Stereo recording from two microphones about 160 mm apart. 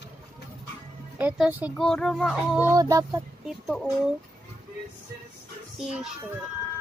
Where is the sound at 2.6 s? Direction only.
20° right (ahead or behind).